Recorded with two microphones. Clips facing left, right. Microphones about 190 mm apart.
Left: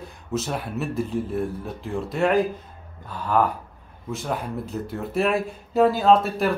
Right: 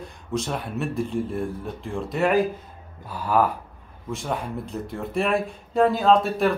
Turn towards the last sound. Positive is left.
turn(degrees=0)  # may be behind; listen again after turning